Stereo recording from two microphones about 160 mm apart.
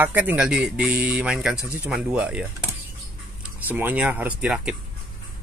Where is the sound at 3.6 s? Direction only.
10° right (ahead or behind).